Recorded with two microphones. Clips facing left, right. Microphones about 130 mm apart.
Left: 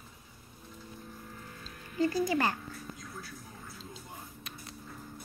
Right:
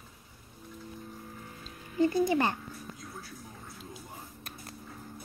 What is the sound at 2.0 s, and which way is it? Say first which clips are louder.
Speech: right 3 dB; 25° right (ahead or behind).